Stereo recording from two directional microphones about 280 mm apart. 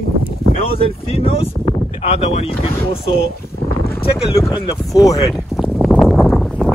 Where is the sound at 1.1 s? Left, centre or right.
Left.